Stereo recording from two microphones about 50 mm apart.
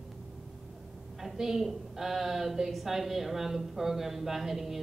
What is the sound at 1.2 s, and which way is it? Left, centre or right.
A woman's voice, centre.